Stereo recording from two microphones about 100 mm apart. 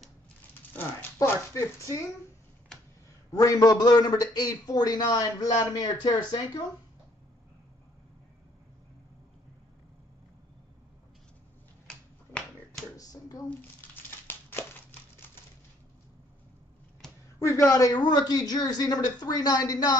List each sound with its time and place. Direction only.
0.7 s speech: 20° left (ahead or behind)
3.3 s a man's voice: 40° left (ahead or behind)
12.9 s a sound: 35° left (ahead or behind)
13.5 s crumpling: 20° left (ahead or behind)
17.4 s a man's voice: 30° left (ahead or behind)